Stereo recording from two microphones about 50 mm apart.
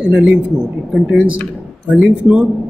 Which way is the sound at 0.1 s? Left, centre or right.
Centre.